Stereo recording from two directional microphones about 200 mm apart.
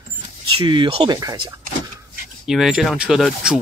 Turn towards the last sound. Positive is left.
turn(degrees=-5)  # may be behind; listen again after turning